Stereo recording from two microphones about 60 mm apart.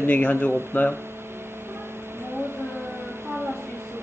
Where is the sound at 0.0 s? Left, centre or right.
Left.